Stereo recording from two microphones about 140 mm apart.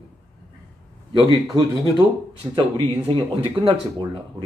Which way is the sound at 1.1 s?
25° right (ahead or behind).